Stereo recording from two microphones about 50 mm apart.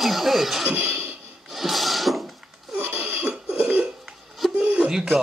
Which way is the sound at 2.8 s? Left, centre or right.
Right.